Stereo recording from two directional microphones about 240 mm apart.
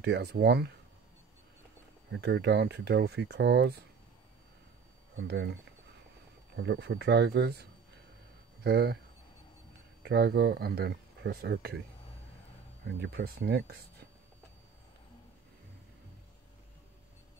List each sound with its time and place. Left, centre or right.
0.0 s speech: right
2.2 s speech: right
5.1 s speech: right
6.6 s speech: right
8.6 s speech: right
10.0 s speech: right
13.0 s speech: right